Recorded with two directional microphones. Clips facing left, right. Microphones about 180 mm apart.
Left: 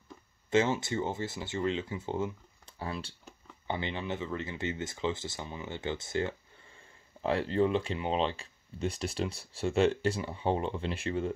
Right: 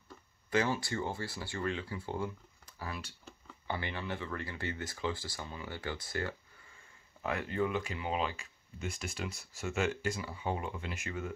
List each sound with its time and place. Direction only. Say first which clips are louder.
0.5 s speech: left 4 dB; 25° left (ahead or behind)